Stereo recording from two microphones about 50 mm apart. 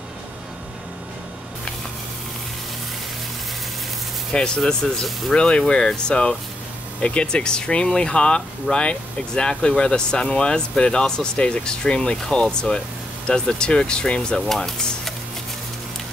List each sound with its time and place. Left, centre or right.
4.3 s speech: centre